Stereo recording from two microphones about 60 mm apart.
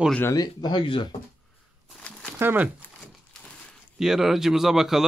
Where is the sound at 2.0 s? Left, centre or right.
Centre.